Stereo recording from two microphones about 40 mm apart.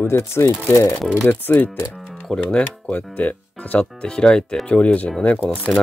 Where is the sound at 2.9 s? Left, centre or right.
Left.